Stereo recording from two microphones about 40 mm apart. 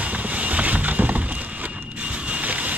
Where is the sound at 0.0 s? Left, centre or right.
Right.